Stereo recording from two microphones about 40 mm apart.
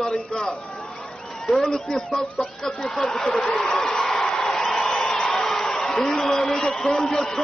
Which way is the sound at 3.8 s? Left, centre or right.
Centre.